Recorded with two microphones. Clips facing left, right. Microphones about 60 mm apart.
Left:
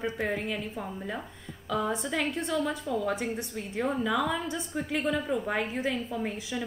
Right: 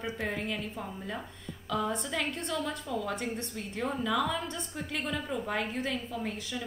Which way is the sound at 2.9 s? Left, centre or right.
Centre.